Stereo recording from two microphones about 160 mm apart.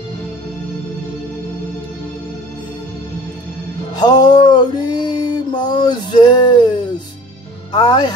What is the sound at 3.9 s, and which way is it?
Mantra, 25° left (ahead or behind).